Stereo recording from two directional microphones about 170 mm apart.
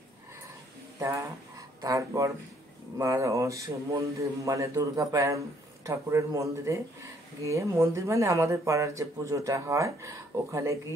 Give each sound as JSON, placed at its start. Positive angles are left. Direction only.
{"t": 0.9, "sound": "speech", "side_deg": -15}